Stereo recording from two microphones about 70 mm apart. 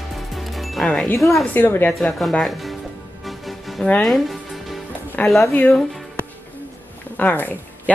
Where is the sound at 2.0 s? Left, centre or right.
Centre.